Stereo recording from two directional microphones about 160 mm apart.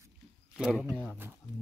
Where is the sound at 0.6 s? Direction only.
5° right (ahead or behind).